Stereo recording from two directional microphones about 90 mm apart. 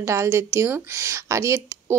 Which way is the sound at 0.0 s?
35° right (ahead or behind).